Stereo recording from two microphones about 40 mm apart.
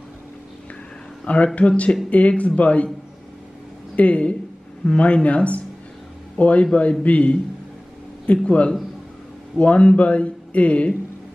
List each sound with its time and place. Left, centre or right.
1.2 s speech: left
3.9 s speech: left